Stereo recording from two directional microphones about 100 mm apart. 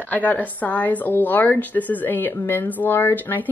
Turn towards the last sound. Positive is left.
turn(degrees=20)  # may be behind; listen again after turning